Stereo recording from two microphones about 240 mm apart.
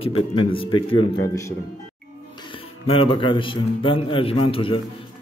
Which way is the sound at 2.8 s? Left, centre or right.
Left.